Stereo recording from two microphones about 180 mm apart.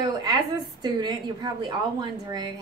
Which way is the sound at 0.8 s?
25° right (ahead or behind).